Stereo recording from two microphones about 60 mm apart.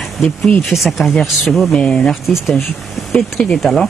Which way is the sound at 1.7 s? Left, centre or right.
Centre.